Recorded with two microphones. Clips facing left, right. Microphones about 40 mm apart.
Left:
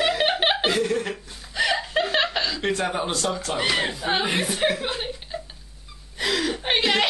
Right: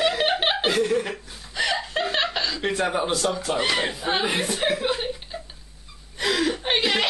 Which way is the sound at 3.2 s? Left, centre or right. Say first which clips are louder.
Right 1 dB; centre.